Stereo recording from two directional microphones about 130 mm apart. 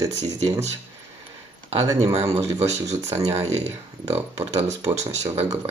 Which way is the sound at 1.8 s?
25° right (ahead or behind).